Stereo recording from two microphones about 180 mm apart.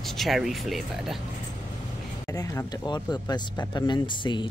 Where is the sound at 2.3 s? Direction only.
20° left (ahead or behind).